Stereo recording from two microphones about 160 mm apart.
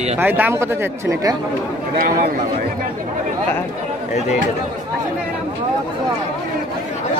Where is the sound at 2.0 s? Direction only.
60° right (ahead or behind).